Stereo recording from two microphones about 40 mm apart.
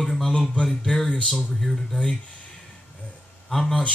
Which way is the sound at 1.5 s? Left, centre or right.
Centre.